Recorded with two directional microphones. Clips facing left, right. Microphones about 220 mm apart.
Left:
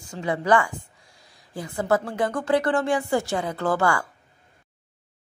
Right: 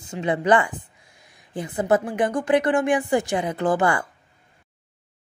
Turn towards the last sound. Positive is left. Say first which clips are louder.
# right 2 dB
turn(degrees=-20)  # may be behind; listen again after turning